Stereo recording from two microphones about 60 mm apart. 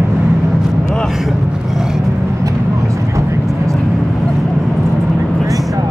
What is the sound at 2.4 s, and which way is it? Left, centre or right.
Vehicle, right.